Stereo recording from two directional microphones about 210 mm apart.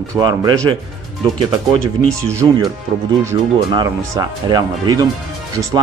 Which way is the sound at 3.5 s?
20° right (ahead or behind).